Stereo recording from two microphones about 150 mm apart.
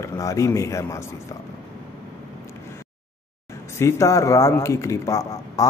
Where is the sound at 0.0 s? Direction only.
20° left (ahead or behind).